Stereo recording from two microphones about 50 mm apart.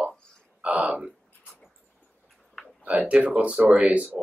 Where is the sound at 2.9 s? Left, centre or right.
Right.